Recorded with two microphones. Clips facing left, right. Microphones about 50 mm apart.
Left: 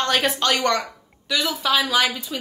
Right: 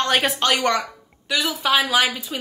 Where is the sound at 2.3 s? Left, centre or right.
Right.